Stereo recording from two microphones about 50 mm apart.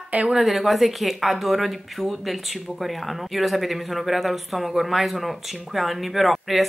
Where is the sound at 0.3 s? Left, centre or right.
Centre.